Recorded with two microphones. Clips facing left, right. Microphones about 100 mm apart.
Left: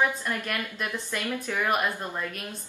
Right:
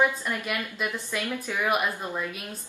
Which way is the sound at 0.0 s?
15° right (ahead or behind).